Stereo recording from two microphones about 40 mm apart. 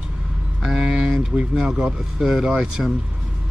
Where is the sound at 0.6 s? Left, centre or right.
Centre.